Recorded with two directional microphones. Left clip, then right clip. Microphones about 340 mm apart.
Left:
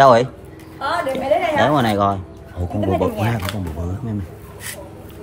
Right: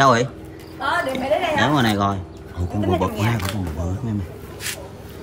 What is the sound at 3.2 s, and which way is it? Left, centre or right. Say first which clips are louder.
Speech: left 1 dB; centre.